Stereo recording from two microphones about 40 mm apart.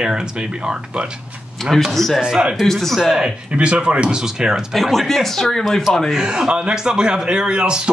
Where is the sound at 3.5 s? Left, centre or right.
Right.